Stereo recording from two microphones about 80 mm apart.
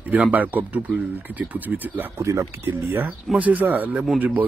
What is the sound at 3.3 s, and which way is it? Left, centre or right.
Speech, centre.